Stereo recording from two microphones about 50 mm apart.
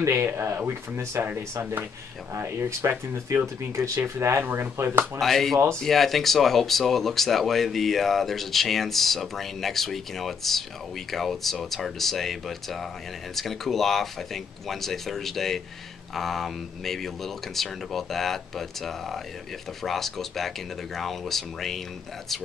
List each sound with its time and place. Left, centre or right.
0.0 s speech: right
2.3 s speech: right
3.3 s speech: right
4.2 s speech: right
4.5 s speech: right
5.2 s speech: centre